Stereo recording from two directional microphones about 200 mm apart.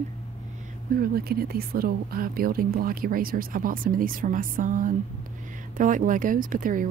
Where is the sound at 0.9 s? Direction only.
50° right (ahead or behind).